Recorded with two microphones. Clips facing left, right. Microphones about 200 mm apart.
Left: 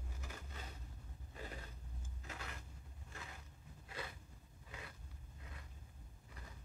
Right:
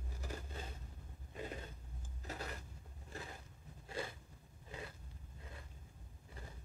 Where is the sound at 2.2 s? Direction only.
35° right (ahead or behind).